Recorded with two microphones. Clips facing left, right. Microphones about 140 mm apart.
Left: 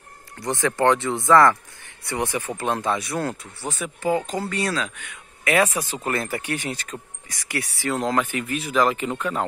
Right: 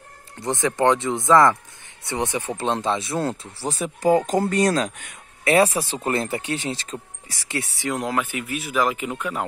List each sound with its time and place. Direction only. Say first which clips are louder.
0.4 s speech: right 1 dB; 20° right (ahead or behind)
7.9 s speech: left 2 dB; 10° right (ahead or behind)